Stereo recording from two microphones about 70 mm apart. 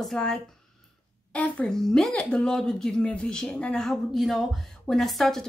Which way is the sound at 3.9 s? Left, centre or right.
Centre.